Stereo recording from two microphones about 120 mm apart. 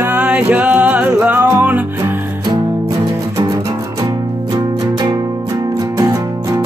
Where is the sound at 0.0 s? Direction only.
10° right (ahead or behind).